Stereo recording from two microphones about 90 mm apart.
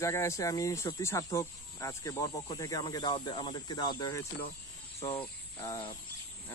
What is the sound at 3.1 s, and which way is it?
Speech, 65° left (ahead or behind).